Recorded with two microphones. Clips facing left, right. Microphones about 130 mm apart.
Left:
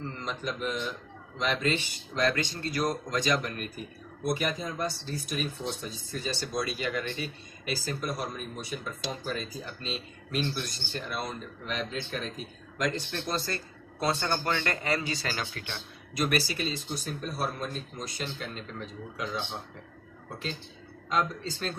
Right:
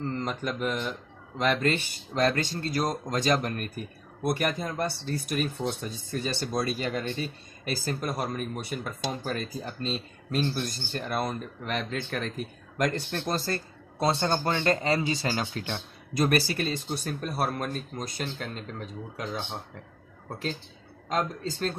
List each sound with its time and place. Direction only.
0.1 s speech: 55° right (ahead or behind)
2.2 s speech: 40° right (ahead or behind)
14.0 s speech: 25° right (ahead or behind); by 18.6 s 50° right (ahead or behind)
21.1 s speech: 45° right (ahead or behind)